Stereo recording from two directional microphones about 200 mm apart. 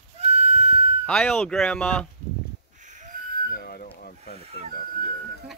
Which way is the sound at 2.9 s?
40° right (ahead or behind).